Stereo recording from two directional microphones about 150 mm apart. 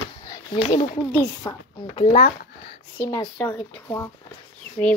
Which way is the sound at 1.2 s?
25° left (ahead or behind).